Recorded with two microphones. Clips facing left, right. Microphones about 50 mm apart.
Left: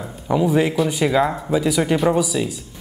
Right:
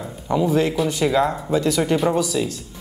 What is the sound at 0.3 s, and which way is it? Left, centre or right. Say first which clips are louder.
A woman's voice: left 1 dB; centre.